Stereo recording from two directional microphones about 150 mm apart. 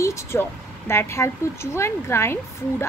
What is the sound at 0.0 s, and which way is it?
Speech, 15° left (ahead or behind).